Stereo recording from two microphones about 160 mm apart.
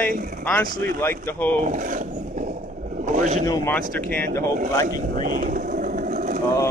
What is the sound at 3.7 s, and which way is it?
Speech, 10° left (ahead or behind).